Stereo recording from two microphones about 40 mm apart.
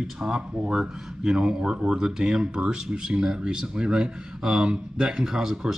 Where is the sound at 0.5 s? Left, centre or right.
Right.